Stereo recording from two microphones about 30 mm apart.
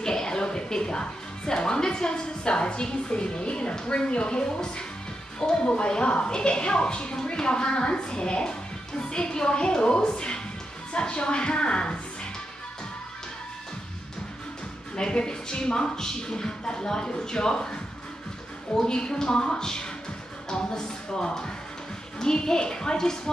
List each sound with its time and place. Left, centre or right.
0.0 s a woman's voice: left
15.0 s speech: left
18.8 s speech: left